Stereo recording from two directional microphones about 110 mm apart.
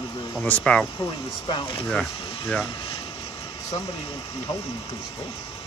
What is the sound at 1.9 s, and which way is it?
Speech, 5° left (ahead or behind).